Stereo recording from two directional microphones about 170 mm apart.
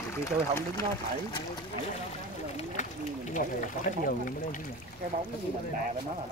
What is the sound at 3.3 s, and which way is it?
Speech, 50° left (ahead or behind).